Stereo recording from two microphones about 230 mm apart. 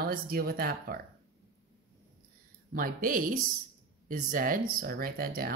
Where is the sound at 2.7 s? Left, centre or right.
Right.